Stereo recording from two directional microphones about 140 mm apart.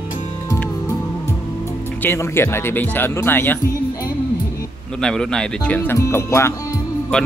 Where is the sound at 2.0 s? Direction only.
15° left (ahead or behind).